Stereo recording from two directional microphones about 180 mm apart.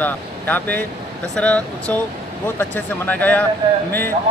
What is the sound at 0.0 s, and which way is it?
Speech, 10° left (ahead or behind).